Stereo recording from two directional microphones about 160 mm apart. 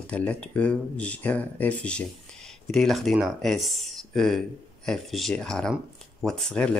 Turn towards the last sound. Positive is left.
turn(degrees=5)  # may be behind; listen again after turning